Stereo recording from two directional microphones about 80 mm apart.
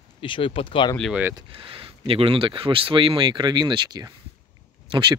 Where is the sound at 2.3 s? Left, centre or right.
Right.